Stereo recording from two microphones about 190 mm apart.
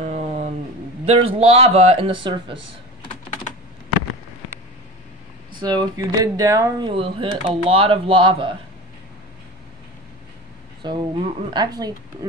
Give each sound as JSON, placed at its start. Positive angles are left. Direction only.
{"t": 0.0, "sound": "a sound", "side_deg": -35}
{"t": 1.0, "sound": "speech", "side_deg": -30}
{"t": 5.6, "sound": "speech", "side_deg": -20}
{"t": 6.9, "sound": "speech", "side_deg": -30}
{"t": 10.8, "sound": "speech", "side_deg": -25}